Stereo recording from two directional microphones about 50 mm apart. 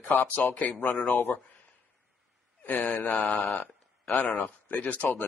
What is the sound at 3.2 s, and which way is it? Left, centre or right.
Mantra, centre.